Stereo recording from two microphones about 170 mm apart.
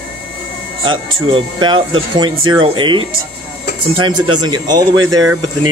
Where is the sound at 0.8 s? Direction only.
30° right (ahead or behind).